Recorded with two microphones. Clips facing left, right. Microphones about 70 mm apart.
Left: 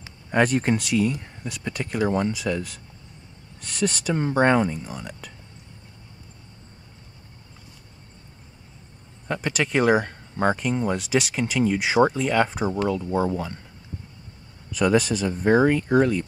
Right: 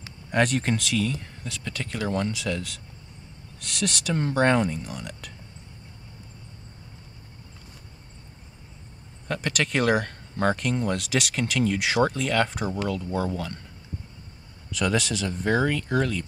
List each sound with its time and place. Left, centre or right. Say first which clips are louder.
0.3 s speech: left 3 dB; centre
2.4 s speech: left 3 dB; centre
4.1 s speech: left 2 dB; centre
9.3 s speech: left 2 dB; centre
14.8 s speech: left 5 dB; left
15.2 s speech: left 5 dB; centre